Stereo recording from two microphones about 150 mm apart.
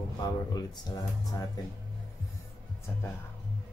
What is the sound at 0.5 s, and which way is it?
Speech, 25° left (ahead or behind).